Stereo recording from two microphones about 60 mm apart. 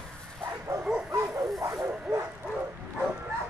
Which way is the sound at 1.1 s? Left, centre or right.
Right.